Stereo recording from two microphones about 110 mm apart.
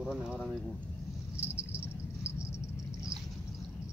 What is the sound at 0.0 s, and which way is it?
Speech, 5° right (ahead or behind).